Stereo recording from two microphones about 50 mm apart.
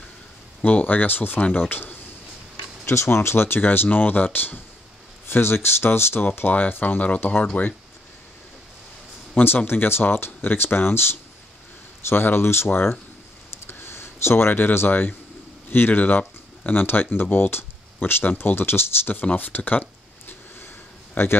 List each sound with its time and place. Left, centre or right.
0.7 s speech: left
2.9 s speech: left
5.2 s speech: left
6.2 s speech: left
9.4 s speech: left
9.7 s speech: left
13.5 s a sound: left
15.7 s speech: left
19.3 s a sound: left